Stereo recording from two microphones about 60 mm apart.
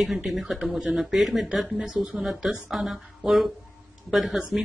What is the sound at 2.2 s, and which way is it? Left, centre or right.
Speech, centre.